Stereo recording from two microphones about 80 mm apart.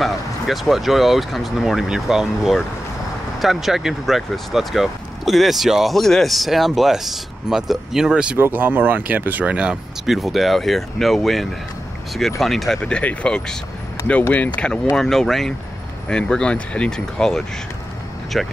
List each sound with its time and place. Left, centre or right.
0.0 s speech: centre
8.4 s speech: right; by 14.8 s centre
15.0 s speech: centre